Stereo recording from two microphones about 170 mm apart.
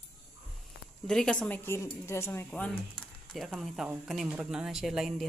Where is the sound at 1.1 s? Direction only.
5° left (ahead or behind).